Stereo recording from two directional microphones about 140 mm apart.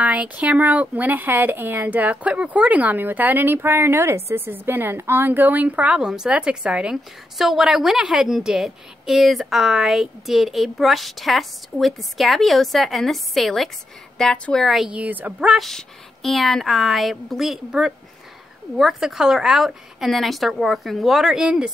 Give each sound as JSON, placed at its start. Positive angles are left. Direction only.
{"t": 0.0, "sound": "speech", "side_deg": -10}